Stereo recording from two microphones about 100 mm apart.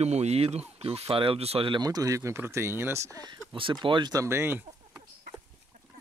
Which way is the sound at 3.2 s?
55° right (ahead or behind).